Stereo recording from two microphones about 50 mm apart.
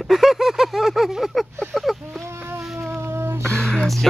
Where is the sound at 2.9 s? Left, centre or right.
Right.